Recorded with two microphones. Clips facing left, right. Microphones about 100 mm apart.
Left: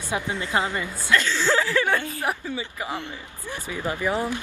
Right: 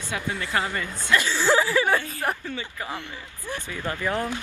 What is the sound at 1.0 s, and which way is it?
Speech, 15° right (ahead or behind).